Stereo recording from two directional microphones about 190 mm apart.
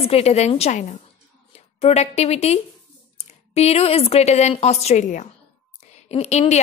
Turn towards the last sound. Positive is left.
turn(degrees=35)  # may be behind; listen again after turning